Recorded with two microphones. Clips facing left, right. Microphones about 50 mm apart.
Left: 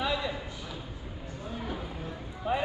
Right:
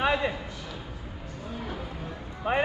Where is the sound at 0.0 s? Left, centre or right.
Right.